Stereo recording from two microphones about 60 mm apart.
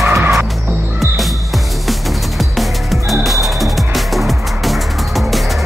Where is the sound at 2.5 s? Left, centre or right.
Centre.